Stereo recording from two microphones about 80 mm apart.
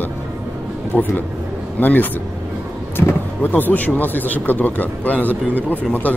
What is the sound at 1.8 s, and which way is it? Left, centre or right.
A man's voice, left.